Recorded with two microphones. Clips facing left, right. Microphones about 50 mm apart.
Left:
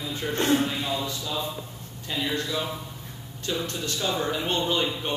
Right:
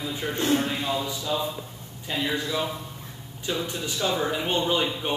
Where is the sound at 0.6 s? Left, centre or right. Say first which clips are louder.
Even; centre.